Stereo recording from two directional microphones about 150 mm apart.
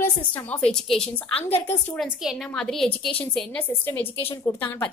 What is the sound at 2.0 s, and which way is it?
A woman's voice, centre (ahead or behind).